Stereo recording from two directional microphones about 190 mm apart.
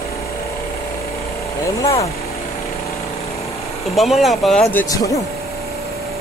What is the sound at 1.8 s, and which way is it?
Speech, 15° left (ahead or behind).